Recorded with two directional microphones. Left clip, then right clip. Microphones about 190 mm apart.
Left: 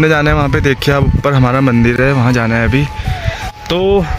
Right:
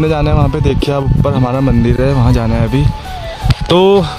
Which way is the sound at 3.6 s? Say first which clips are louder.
Right 5 dB; 50° right (ahead or behind).